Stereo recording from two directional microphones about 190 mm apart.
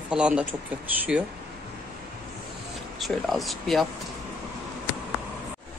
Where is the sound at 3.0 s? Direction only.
Centre (ahead or behind).